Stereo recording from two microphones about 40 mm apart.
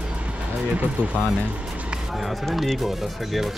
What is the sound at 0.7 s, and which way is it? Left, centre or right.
Speech, right.